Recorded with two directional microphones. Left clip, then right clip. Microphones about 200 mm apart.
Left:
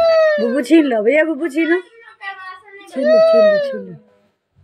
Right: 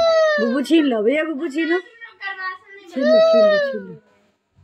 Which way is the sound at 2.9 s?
15° left (ahead or behind).